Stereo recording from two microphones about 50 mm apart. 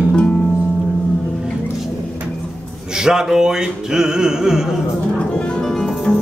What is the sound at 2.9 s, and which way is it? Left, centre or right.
Music, centre.